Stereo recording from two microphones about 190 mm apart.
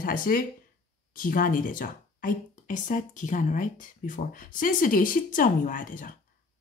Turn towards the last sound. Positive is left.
turn(degrees=45)  # may be behind; listen again after turning